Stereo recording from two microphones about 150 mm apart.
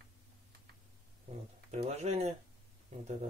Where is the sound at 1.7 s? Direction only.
45° right (ahead or behind).